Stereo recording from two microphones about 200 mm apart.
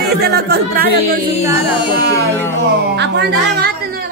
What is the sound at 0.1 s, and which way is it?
Speech, 50° right (ahead or behind).